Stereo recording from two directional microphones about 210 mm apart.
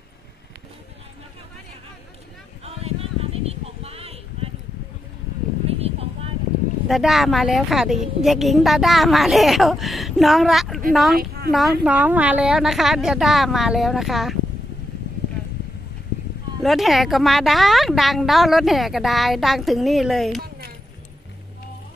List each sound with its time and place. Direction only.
2.6 s a sound: 30° right (ahead or behind)
5.7 s a sound: 30° right (ahead or behind)
6.9 s a woman's voice: centre (ahead or behind)
11.1 s speech: 50° right (ahead or behind)
11.8 s a woman's voice: 10° right (ahead or behind)
16.6 s a woman's voice: centre (ahead or behind)